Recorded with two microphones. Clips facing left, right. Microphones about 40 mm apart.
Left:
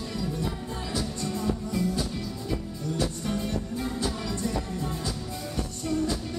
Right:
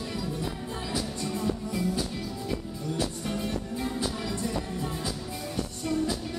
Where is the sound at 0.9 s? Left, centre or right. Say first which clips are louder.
Left 1 dB; centre.